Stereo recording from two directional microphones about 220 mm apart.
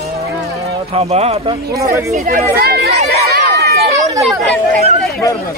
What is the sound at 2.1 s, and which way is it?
Speech, 40° right (ahead or behind).